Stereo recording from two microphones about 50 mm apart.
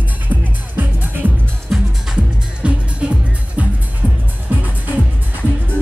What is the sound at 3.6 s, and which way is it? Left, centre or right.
Music, right.